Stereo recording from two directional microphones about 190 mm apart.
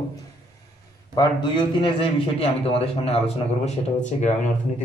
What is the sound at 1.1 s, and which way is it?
A man's voice, 20° left (ahead or behind).